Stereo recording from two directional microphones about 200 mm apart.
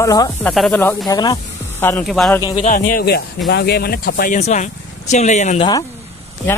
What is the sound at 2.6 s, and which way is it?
Speech, 45° left (ahead or behind).